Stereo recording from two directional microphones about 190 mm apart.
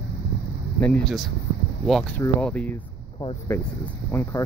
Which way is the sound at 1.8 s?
Centre (ahead or behind).